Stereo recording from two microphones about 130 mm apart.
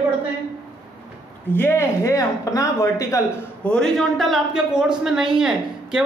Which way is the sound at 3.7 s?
5° left (ahead or behind).